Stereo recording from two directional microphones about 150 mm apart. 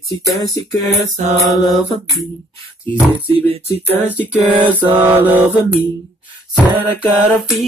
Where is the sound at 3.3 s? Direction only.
40° right (ahead or behind).